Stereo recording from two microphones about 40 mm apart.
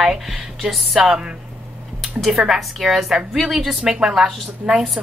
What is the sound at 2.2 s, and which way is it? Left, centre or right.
A woman's voice, centre.